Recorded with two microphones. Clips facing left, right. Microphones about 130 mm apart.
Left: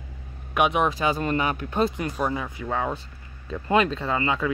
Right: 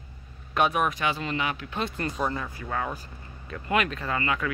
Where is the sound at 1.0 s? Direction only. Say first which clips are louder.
Left 5 dB; 45° left (ahead or behind).